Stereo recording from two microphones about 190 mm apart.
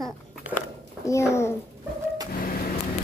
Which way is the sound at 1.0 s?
15° left (ahead or behind).